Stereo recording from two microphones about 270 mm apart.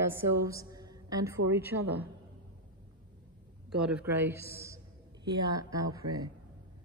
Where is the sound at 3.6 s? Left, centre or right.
Centre.